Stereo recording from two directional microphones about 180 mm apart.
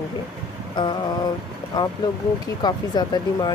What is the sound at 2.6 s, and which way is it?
Speech, 25° left (ahead or behind).